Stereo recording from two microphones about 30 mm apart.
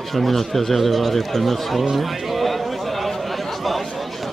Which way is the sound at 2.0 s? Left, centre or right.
Centre.